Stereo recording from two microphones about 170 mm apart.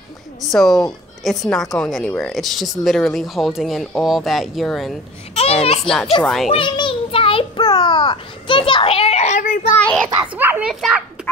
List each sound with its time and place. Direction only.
0.4 s a woman's voice: centre (ahead or behind)
5.3 s a child's voice: 35° left (ahead or behind)
6.2 s a woman's voice: centre (ahead or behind)
6.5 s a sound: 30° left (ahead or behind); by 9.7 s 45° left (ahead or behind)
9.7 s a child's voice: 5° left (ahead or behind)
10.2 s a child's voice: 10° right (ahead or behind)